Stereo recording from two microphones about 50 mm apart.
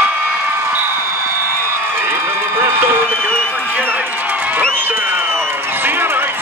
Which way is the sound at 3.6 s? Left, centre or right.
Right.